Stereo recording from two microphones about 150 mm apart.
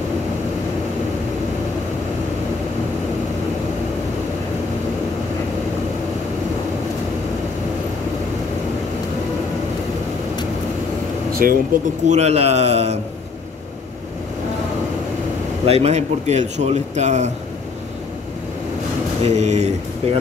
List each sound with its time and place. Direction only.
11.4 s speech: 70° right (ahead or behind)
12.1 s speech: 45° right (ahead or behind)
15.6 s speech: 40° right (ahead or behind)
19.2 s speech: 50° right (ahead or behind)